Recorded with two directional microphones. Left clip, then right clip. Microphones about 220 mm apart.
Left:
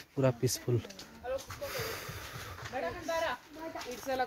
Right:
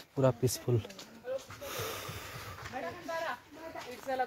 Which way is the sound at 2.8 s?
35° left (ahead or behind).